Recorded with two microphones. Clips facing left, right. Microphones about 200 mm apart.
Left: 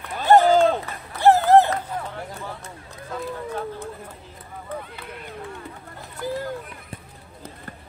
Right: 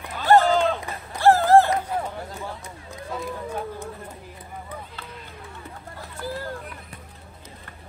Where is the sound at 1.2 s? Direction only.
20° left (ahead or behind).